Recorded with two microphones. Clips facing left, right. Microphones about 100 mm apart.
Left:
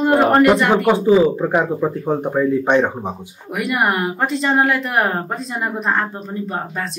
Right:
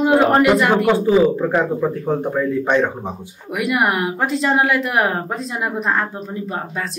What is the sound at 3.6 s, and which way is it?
Speech, centre (ahead or behind).